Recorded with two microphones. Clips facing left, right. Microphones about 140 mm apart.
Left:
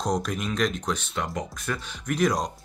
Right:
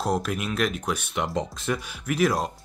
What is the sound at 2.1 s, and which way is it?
Speech, 5° right (ahead or behind).